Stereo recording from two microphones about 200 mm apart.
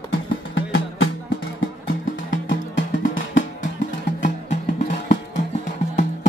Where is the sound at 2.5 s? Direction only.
65° left (ahead or behind).